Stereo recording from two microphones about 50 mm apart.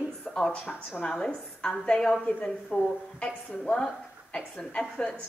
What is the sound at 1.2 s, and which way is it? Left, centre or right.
A woman's voice, centre.